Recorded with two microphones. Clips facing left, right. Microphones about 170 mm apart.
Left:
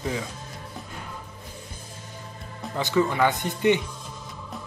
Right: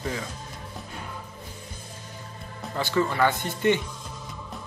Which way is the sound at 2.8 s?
20° left (ahead or behind).